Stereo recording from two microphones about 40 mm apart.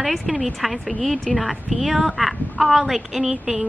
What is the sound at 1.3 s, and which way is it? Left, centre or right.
Speech, centre.